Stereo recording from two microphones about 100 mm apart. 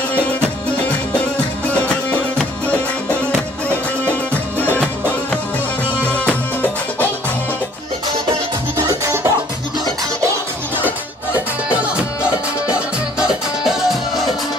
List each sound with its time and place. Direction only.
1.7 s music: 15° left (ahead or behind)
6.0 s music: 15° left (ahead or behind)
8.7 s music: 30° right (ahead or behind)
13.3 s music: 5° right (ahead or behind)